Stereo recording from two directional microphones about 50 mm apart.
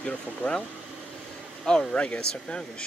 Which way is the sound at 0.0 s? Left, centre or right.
Left.